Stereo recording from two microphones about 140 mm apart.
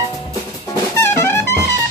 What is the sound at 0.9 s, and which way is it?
Music, 20° left (ahead or behind).